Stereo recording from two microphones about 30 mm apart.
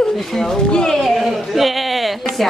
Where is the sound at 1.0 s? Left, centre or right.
Centre.